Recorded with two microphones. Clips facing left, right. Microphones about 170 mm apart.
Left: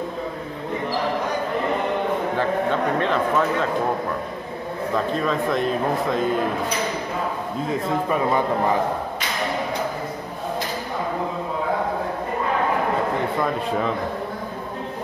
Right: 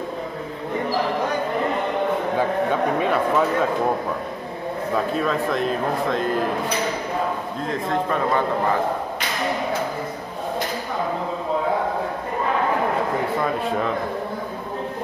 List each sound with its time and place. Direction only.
3.0 s speech: 10° right (ahead or behind)
4.9 s speech: 5° right (ahead or behind)
7.6 s speech: 5° left (ahead or behind)